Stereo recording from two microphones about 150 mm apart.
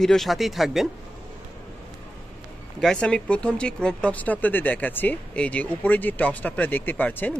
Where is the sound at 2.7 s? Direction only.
5° left (ahead or behind).